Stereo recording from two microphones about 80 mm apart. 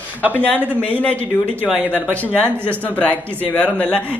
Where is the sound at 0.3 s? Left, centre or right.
Centre.